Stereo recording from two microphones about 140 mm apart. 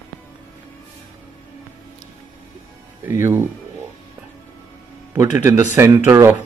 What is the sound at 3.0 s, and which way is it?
Speech, 20° right (ahead or behind).